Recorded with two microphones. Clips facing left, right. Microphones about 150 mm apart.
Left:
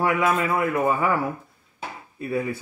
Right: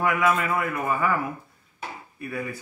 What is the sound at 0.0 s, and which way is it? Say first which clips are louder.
Speech: left 1 dB; 30° left (ahead or behind).